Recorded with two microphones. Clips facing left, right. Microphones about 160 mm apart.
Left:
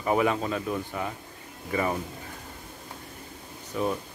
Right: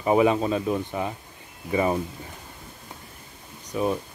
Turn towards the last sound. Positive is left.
turn(degrees=-20)  # may be behind; listen again after turning